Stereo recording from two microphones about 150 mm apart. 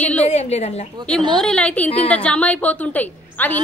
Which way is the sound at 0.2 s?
45° left (ahead or behind).